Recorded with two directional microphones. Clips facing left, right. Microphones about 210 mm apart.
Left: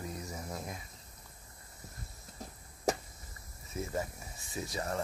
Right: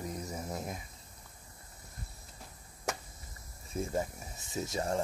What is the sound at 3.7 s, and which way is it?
Speech, 30° right (ahead or behind).